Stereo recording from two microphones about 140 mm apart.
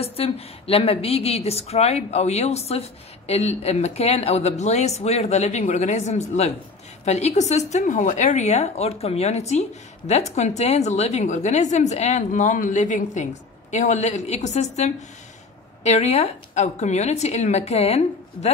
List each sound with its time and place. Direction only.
0.0 s a woman's voice: 45° left (ahead or behind)